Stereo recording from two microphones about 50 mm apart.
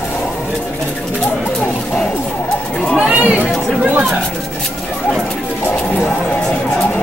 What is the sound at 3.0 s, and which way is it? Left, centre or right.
Chatter, right.